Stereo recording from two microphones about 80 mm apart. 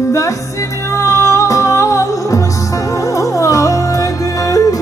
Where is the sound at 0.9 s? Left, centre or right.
Left.